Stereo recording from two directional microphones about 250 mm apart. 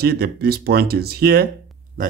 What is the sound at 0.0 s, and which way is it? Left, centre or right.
Speech, right.